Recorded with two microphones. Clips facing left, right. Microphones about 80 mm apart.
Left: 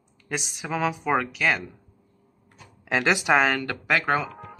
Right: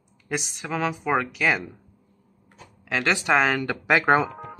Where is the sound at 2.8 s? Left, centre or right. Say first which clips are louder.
Left 1 dB; centre.